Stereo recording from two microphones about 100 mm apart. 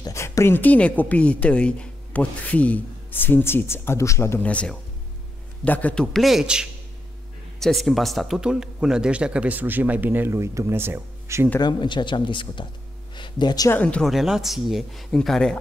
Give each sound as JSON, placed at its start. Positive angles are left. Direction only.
{"t": 0.0, "sound": "a woman's voice", "side_deg": 35}
{"t": 4.5, "sound": "a man's voice", "side_deg": 15}
{"t": 6.1, "sound": "a man's voice", "side_deg": 0}
{"t": 11.6, "sound": "speech", "side_deg": 50}
{"t": 13.1, "sound": "a sound", "side_deg": 50}
{"t": 13.7, "sound": "a man's voice", "side_deg": 15}
{"t": 14.1, "sound": "speech", "side_deg": -5}